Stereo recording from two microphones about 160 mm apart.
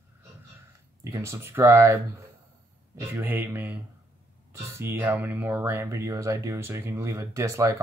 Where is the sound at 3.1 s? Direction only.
15° right (ahead or behind).